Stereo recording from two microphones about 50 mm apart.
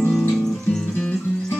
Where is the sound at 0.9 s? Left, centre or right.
Left.